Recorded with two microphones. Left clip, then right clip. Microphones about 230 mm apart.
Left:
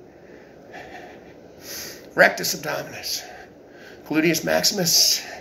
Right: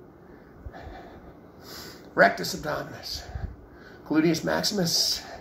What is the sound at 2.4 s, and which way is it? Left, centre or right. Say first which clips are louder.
A man's voice: left 4 dB; left.